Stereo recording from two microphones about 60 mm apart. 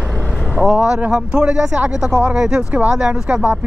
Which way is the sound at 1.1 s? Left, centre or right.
Centre.